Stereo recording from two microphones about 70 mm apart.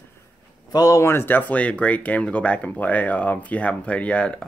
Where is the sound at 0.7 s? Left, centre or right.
Left.